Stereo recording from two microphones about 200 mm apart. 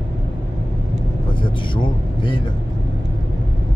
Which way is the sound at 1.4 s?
25° left (ahead or behind).